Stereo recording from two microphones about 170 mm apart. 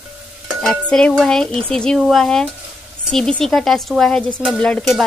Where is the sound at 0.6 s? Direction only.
5° left (ahead or behind).